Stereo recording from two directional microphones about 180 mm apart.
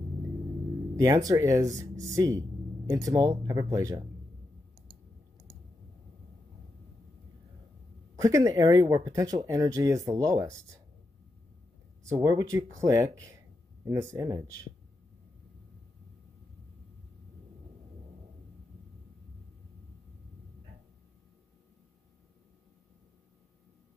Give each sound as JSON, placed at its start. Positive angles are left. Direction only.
{"t": 0.9, "sound": "speech", "side_deg": -20}
{"t": 8.2, "sound": "speech", "side_deg": -20}
{"t": 12.0, "sound": "speech", "side_deg": -20}